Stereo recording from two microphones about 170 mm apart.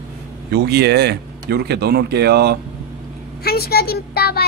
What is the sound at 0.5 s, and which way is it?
Speech, 75° right (ahead or behind).